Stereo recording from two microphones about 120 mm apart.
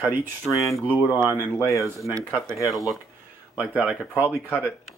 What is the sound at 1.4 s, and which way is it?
Speech, 25° left (ahead or behind).